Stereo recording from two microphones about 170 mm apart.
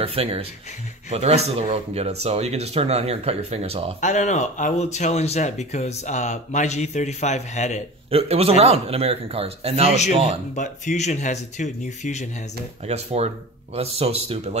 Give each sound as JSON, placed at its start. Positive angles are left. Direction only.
{"t": 0.0, "sound": "speech", "side_deg": -35}
{"t": 4.0, "sound": "speech", "side_deg": 45}
{"t": 8.1, "sound": "speech", "side_deg": -35}
{"t": 10.5, "sound": "speech", "side_deg": 45}
{"t": 12.8, "sound": "speech", "side_deg": -40}